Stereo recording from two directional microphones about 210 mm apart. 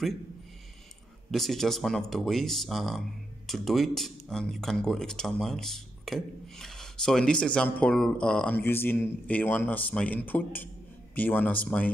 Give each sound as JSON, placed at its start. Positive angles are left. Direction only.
{"t": 1.3, "sound": "speech", "side_deg": 0}